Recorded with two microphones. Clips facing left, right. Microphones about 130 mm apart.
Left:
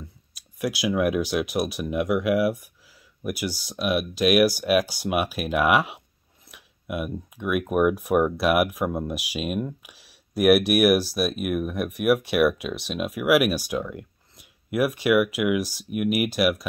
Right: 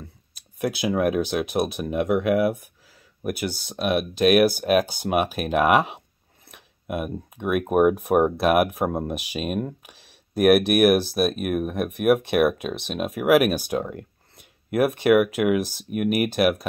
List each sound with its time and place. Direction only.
0.6 s speech: 40° right (ahead or behind)
3.3 s speech: 55° right (ahead or behind)
6.5 s a sound: 40° right (ahead or behind)
7.6 s speech: 40° right (ahead or behind)